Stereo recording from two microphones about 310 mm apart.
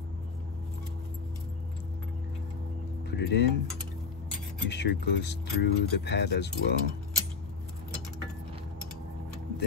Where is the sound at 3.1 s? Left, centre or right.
Left.